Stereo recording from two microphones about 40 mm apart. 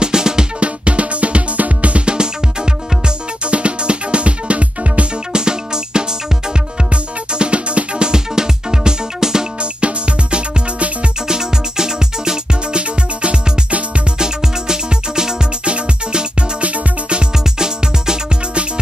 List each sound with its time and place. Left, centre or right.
0.0 s music: centre
0.6 s music: right
5.3 s music: centre
9.6 s music: right
11.2 s music: centre
13.2 s music: right
14.1 s music: centre
16.6 s music: right
17.2 s music: centre